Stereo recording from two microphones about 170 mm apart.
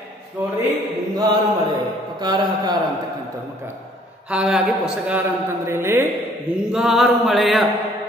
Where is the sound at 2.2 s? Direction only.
25° right (ahead or behind).